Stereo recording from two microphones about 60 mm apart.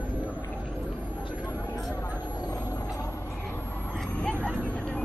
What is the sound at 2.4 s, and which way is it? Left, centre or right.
Vehicle, left.